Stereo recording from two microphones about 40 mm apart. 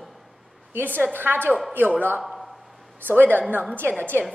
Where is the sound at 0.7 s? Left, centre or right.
Right.